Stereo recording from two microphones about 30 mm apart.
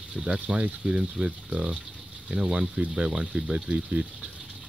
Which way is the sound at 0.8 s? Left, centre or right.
Right.